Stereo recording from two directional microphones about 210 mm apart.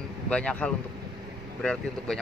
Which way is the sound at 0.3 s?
5° left (ahead or behind).